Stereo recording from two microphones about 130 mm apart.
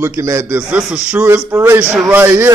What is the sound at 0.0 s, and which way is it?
A man's voice, 20° right (ahead or behind).